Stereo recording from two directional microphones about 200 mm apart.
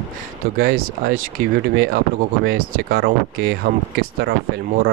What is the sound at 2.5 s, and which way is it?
Speech, 45° right (ahead or behind).